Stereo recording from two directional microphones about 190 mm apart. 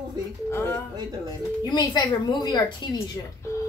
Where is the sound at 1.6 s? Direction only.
20° left (ahead or behind).